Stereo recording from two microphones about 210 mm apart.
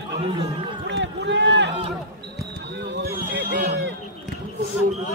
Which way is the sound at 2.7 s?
55° right (ahead or behind).